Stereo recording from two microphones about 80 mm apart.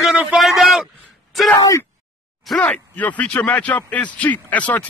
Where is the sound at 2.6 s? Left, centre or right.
Centre.